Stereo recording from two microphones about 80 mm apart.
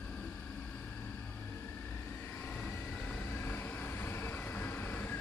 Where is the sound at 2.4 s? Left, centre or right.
Left.